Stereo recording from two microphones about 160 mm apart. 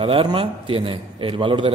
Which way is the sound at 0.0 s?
35° right (ahead or behind).